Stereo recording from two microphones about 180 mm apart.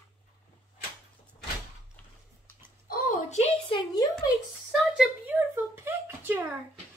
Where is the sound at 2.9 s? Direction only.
50° left (ahead or behind).